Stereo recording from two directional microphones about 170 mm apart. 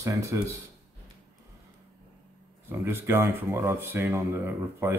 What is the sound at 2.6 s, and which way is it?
Speech, 15° right (ahead or behind).